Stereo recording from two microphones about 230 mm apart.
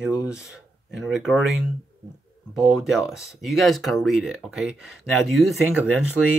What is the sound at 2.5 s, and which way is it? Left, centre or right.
Speech, centre.